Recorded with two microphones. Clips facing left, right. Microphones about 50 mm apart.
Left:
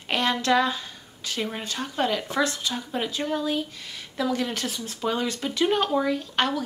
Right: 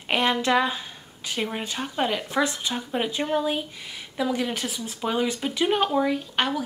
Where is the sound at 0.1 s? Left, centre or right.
Centre.